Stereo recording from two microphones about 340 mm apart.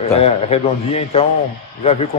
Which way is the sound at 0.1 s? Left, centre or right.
Centre.